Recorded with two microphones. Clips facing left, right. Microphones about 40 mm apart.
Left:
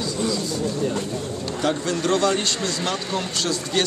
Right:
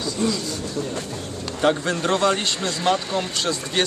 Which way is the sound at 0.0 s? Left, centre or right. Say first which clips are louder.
Right 1 dB; centre.